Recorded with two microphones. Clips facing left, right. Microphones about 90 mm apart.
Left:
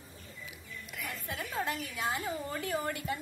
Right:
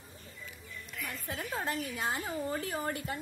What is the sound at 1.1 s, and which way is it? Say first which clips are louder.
A woman's voice: right 1 dB; 40° right (ahead or behind).